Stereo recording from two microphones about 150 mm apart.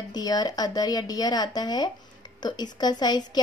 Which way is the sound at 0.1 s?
25° left (ahead or behind).